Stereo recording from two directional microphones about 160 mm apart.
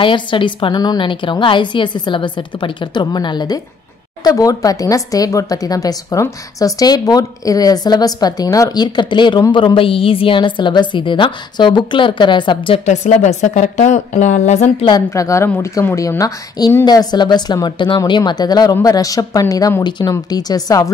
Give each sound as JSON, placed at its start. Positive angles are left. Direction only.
{"t": 0.0, "sound": "speech", "side_deg": 30}
{"t": 12.8, "sound": "a woman's voice", "side_deg": 45}
{"t": 14.9, "sound": "speech", "side_deg": 20}